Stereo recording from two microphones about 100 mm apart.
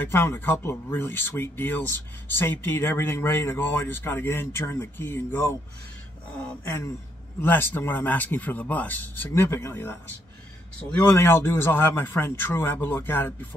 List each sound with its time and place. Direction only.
0.0 s speech: 25° left (ahead or behind)
7.3 s speech: 20° left (ahead or behind)